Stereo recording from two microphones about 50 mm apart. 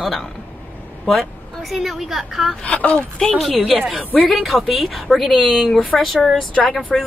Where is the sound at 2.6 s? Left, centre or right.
Left.